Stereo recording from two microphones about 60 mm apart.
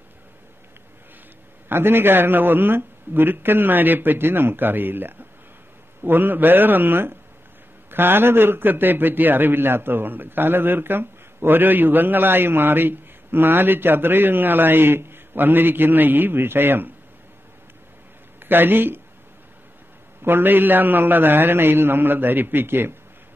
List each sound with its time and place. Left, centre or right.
1.7 s a man's voice: right
18.5 s a man's voice: right
20.2 s a man's voice: right